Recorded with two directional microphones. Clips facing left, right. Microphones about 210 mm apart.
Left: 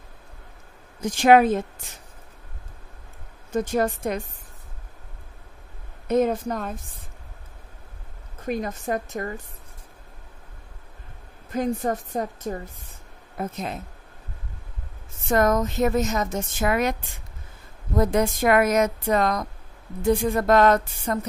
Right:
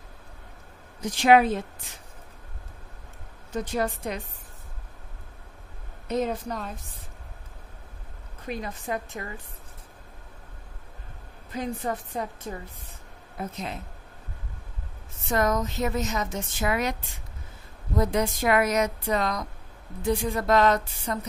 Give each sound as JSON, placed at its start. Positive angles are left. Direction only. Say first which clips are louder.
{"t": 1.0, "sound": "speech", "louder": "left 3 dB", "side_deg": 50}
{"t": 3.5, "sound": "speech", "louder": "left 5 dB", "side_deg": 45}
{"t": 6.0, "sound": "speech", "louder": "left 6 dB", "side_deg": 50}
{"t": 8.5, "sound": "speech", "louder": "left 5 dB", "side_deg": 45}
{"t": 11.5, "sound": "speech", "louder": "left 6 dB", "side_deg": 45}
{"t": 15.2, "sound": "speech", "louder": "left 4 dB", "side_deg": 50}
{"t": 17.9, "sound": "speech", "louder": "left 4 dB", "side_deg": 50}